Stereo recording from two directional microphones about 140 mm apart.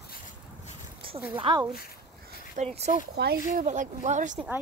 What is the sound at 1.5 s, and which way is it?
Speech, 40° right (ahead or behind).